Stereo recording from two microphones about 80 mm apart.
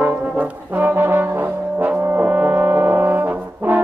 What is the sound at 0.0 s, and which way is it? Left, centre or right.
Brass instrument, right.